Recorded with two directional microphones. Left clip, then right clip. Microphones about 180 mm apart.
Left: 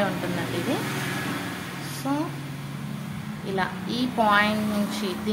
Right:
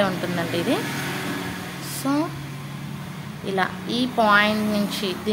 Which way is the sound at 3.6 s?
25° right (ahead or behind).